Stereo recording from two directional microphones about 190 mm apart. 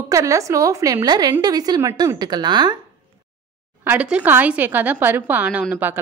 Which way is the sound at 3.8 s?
10° right (ahead or behind).